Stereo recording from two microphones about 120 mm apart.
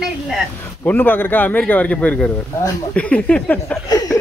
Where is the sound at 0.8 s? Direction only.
15° left (ahead or behind).